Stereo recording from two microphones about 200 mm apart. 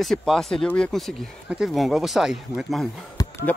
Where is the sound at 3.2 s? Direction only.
20° left (ahead or behind).